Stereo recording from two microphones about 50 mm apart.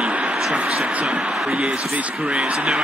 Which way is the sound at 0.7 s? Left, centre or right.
Right.